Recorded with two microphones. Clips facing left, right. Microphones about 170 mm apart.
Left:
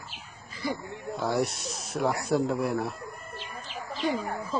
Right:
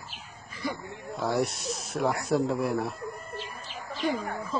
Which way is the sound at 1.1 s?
Centre (ahead or behind).